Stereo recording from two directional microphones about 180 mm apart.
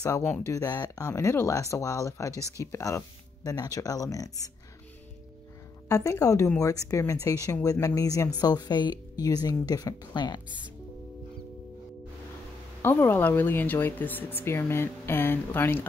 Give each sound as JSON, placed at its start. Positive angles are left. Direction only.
{"t": 0.0, "sound": "a woman's voice", "side_deg": 15}
{"t": 5.9, "sound": "a woman's voice", "side_deg": 15}
{"t": 12.8, "sound": "a woman's voice", "side_deg": 10}